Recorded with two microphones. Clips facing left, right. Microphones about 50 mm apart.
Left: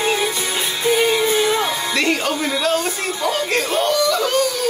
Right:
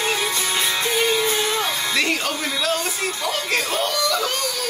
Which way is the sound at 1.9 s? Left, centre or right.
Centre.